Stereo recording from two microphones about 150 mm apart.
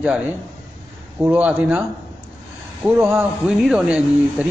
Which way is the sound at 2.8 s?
15° right (ahead or behind).